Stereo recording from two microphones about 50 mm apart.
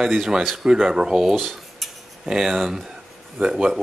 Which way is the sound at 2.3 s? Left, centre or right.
Centre.